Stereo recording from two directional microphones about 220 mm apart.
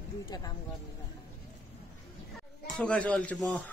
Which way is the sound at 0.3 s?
20° left (ahead or behind).